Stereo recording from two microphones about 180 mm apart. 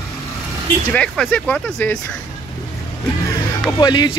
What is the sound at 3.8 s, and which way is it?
Speech, 25° left (ahead or behind).